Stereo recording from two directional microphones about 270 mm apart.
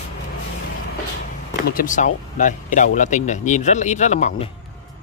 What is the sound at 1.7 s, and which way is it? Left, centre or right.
Speech, left.